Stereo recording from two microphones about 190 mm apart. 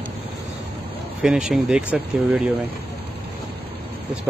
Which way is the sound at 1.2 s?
5° right (ahead or behind).